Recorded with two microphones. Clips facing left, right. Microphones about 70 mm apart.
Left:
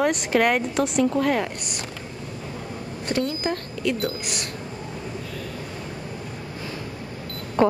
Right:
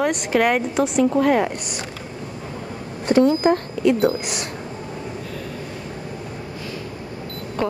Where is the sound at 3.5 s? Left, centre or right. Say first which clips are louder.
Right 7 dB; right.